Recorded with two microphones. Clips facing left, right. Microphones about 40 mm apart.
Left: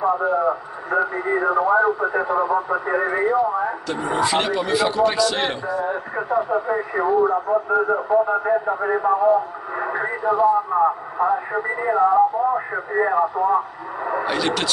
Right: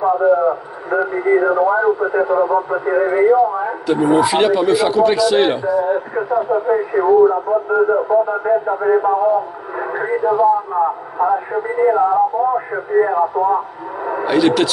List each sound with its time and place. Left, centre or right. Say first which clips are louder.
0.0 s a man's voice: right 5 dB; centre